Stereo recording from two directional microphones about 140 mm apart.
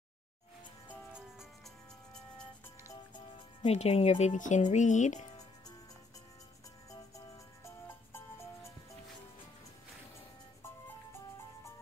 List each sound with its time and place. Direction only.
3.6 s speech: 50° left (ahead or behind)
6.9 s music: 20° left (ahead or behind)